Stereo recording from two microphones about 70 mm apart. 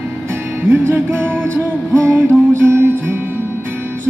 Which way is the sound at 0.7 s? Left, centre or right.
Right.